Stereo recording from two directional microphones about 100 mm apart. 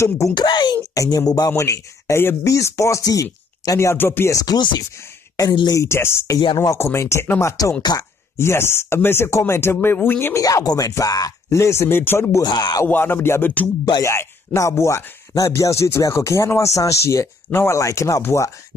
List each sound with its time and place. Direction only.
0.3 s speech: 50° left (ahead or behind)
0.9 s speech: 35° left (ahead or behind)
4.4 s speech: 40° left (ahead or behind)
5.8 s speech: 25° left (ahead or behind)
6.4 s speech: 50° left (ahead or behind)
6.7 s speech: 30° left (ahead or behind)
10.4 s speech: 40° left (ahead or behind)
12.4 s speech: 40° left (ahead or behind)
12.8 s speech: 20° left (ahead or behind)